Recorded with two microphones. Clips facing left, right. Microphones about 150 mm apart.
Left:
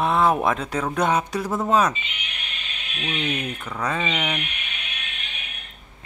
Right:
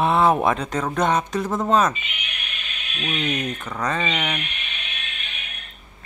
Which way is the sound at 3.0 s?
10° left (ahead or behind).